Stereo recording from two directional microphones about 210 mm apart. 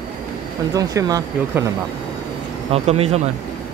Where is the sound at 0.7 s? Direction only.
15° right (ahead or behind).